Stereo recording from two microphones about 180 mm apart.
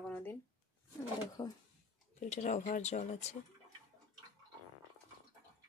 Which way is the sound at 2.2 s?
40° left (ahead or behind).